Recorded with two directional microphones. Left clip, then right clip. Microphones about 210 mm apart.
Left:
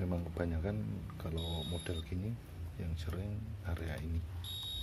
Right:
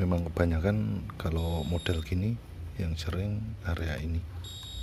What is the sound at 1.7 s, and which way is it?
Speech, 30° right (ahead or behind).